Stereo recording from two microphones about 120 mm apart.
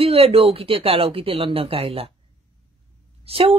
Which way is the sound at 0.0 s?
55° right (ahead or behind).